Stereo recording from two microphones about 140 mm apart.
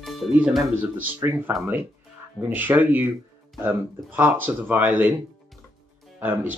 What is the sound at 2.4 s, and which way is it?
Speech, 10° right (ahead or behind).